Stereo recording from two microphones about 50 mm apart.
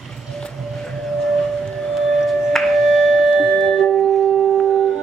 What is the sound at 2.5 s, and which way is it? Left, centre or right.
Music, centre.